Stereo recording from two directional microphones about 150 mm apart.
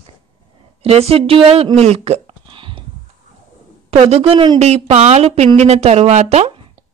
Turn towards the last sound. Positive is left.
turn(degrees=-45)  # may be behind; listen again after turning